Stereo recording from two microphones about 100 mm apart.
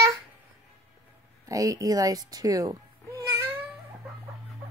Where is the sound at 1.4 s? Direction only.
35° right (ahead or behind).